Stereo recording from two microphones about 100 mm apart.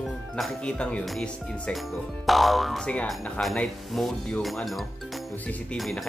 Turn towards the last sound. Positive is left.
turn(degrees=0)  # may be behind; listen again after turning